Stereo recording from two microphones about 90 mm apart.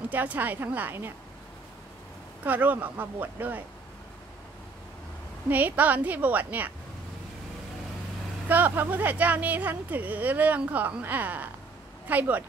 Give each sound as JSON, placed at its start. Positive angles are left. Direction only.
{"t": 0.1, "sound": "speech", "side_deg": -20}
{"t": 2.4, "sound": "speech", "side_deg": -20}
{"t": 5.5, "sound": "speech", "side_deg": -20}
{"t": 8.5, "sound": "speech", "side_deg": -20}